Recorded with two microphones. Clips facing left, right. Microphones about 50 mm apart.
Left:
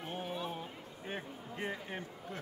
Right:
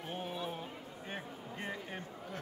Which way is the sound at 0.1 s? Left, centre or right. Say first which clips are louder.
Even; centre.